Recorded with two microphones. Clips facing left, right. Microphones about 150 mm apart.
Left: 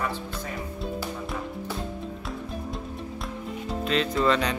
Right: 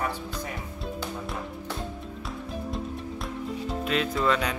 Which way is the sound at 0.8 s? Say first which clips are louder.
Left 1 dB; centre (ahead or behind).